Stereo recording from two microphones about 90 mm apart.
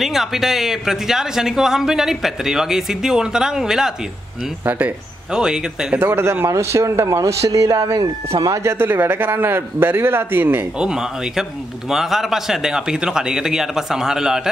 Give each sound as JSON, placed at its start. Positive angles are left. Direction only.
{"t": 0.0, "sound": "speech", "side_deg": -5}
{"t": 4.6, "sound": "a man's voice", "side_deg": -20}
{"t": 5.3, "sound": "speech", "side_deg": -10}
{"t": 5.9, "sound": "speech", "side_deg": -25}
{"t": 8.7, "sound": "a man's voice", "side_deg": -25}
{"t": 10.8, "sound": "speech", "side_deg": -5}